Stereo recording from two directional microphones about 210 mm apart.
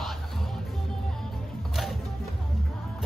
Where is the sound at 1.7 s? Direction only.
Centre (ahead or behind).